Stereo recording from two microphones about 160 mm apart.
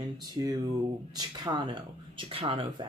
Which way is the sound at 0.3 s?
25° right (ahead or behind).